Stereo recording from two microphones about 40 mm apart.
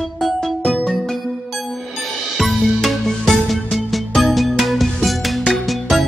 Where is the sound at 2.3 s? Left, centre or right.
Centre.